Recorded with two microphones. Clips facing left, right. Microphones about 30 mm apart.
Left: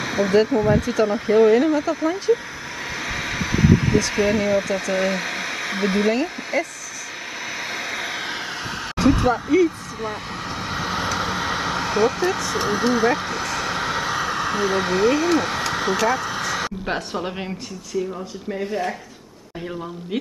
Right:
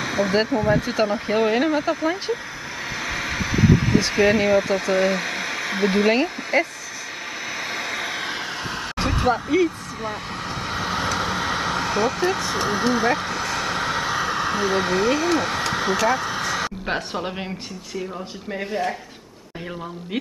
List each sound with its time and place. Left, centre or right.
0.0 s a sound: centre
0.5 s speech: centre
0.7 s speech: right
1.0 s speech: centre; by 2.0 s right
2.3 s speech: centre
3.0 s a sound: centre
4.3 s speech: centre
6.5 s speech: right
7.7 s vehicle: centre
9.0 s a sound: right
9.3 s speech: centre
10.6 s vehicle: centre
18.5 s speech: centre